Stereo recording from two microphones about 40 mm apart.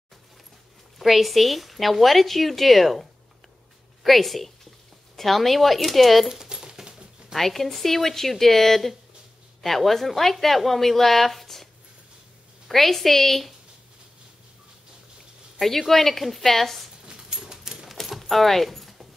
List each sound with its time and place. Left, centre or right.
0.9 s speech: centre
6.2 s a sound: centre
7.3 s speech: centre
15.6 s speech: centre
17.0 s a sound: centre
18.0 s keys jangling: centre